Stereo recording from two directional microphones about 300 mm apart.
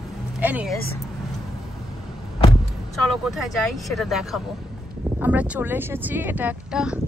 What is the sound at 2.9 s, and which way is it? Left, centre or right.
Speech, centre.